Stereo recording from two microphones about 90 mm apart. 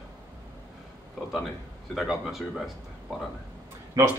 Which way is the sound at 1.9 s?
Centre (ahead or behind).